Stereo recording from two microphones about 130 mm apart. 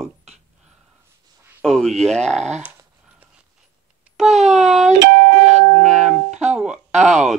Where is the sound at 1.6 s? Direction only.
5° left (ahead or behind).